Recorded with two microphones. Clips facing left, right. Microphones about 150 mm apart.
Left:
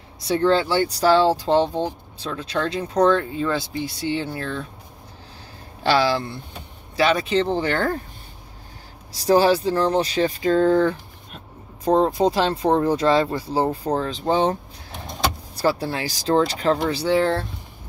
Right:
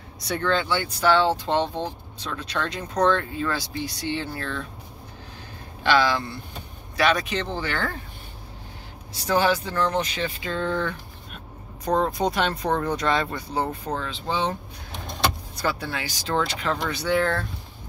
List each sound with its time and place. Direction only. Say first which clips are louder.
0.2 s speech: left 6 dB; 30° left (ahead or behind)
5.9 s speech: left 2 dB; 30° left (ahead or behind)
7.6 s speech: left 6 dB; 45° left (ahead or behind)
9.1 s speech: left 5 dB; 35° left (ahead or behind)
11.3 s speech: left 3 dB; 25° left (ahead or behind)
16.9 s speech: left 4 dB; 30° left (ahead or behind)